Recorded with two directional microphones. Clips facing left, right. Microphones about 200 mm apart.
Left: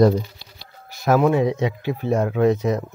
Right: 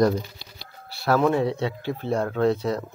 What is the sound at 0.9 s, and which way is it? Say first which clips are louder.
Speech: left 3 dB; 15° left (ahead or behind).